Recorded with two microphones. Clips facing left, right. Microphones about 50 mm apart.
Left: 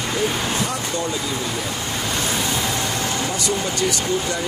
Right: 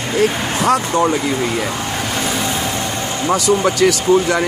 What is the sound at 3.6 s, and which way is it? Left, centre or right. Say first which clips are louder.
Speech: right 8 dB; right.